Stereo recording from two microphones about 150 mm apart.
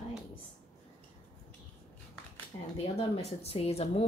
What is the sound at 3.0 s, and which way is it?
Speech, 40° left (ahead or behind).